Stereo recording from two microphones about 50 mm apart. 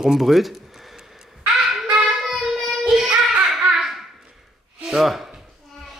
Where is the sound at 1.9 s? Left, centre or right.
Centre.